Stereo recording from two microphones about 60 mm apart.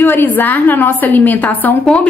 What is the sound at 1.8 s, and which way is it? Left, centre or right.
Speech, centre.